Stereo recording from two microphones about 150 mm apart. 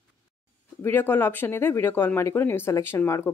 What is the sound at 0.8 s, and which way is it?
Speech, 15° left (ahead or behind).